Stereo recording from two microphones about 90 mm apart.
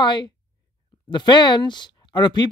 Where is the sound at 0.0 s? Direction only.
55° left (ahead or behind).